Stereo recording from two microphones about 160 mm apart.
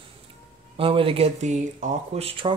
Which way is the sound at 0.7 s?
35° right (ahead or behind).